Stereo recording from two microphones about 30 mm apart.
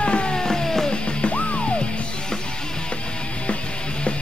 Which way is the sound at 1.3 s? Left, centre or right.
Left.